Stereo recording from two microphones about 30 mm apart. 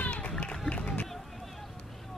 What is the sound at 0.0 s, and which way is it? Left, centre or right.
Run, left.